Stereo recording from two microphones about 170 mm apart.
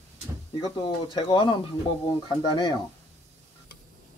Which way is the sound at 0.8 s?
30° left (ahead or behind).